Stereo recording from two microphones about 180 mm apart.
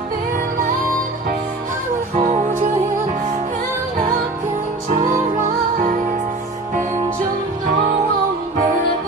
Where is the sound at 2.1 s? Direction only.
45° right (ahead or behind).